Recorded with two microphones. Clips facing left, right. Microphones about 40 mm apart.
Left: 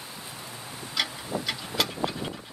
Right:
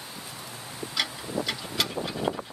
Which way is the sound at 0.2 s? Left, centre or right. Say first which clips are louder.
Even; centre.